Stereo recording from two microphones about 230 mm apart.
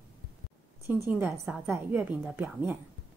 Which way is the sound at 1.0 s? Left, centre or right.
Centre.